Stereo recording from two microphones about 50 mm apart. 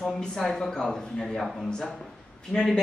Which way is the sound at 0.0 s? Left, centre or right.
Centre.